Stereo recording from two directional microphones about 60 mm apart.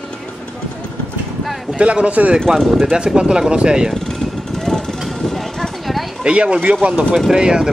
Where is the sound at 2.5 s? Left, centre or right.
Centre.